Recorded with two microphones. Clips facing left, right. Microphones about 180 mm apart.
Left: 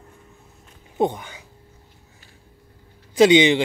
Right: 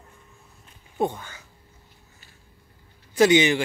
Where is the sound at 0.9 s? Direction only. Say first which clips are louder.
Left 4 dB; 20° left (ahead or behind).